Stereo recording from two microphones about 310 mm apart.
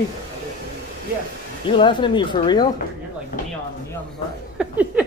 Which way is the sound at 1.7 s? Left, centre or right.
Centre.